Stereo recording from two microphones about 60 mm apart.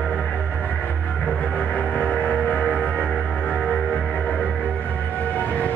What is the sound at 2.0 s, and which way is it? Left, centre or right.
Music, left.